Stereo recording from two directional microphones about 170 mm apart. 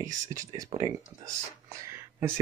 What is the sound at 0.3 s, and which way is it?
Speech, 20° right (ahead or behind).